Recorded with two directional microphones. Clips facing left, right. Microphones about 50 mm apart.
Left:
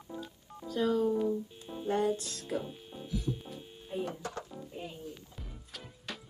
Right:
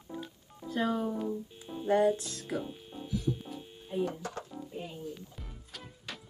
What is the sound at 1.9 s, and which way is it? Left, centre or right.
Music, right.